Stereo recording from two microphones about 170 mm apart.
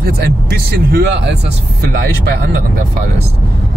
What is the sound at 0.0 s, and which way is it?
Speech, 65° right (ahead or behind).